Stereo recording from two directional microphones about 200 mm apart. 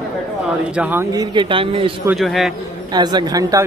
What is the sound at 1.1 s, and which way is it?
Speech, 20° right (ahead or behind).